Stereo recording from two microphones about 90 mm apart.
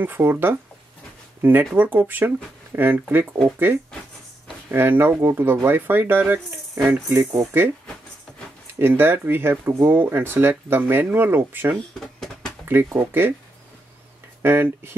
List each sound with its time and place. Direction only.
0.0 s speech: 25° right (ahead or behind)
4.6 s speech: 20° right (ahead or behind)
8.7 s speech: 25° right (ahead or behind)
11.7 s a sound: 5° left (ahead or behind)
12.6 s speech: 25° right (ahead or behind)
14.4 s speech: 25° right (ahead or behind)